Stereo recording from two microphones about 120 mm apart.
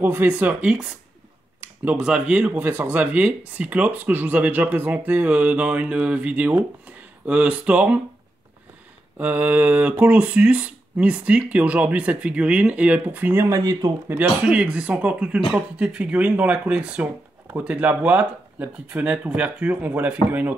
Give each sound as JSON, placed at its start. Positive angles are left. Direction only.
{"t": 0.0, "sound": "speech", "side_deg": -15}
{"t": 1.9, "sound": "speech", "side_deg": -5}
{"t": 9.2, "sound": "speech", "side_deg": -15}
{"t": 13.5, "sound": "speech", "side_deg": -30}
{"t": 14.0, "sound": "speech", "side_deg": -10}